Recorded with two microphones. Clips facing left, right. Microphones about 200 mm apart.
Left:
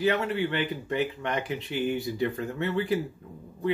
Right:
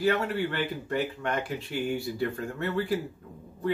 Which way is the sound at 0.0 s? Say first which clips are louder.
Left 1 dB; 20° left (ahead or behind).